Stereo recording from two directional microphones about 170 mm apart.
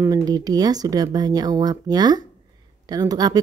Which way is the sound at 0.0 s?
20° right (ahead or behind).